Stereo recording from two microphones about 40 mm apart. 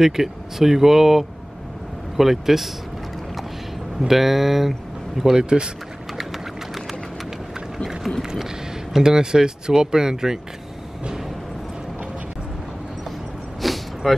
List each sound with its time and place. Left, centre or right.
0.0 s speech: centre
4.1 s speech: centre
5.3 s speech: centre
6.1 s a sound: centre
8.2 s speech: centre
13.6 s a sound: centre